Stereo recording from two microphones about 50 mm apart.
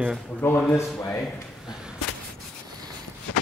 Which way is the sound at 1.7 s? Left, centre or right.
Centre.